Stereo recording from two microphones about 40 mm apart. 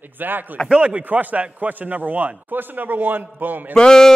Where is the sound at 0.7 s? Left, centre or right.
Right.